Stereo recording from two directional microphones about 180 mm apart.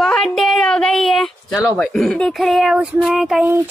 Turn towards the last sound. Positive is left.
turn(degrees=0)  # may be behind; listen again after turning